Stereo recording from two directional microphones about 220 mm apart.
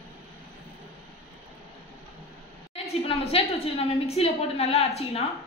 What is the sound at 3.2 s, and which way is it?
A woman's voice, 25° left (ahead or behind).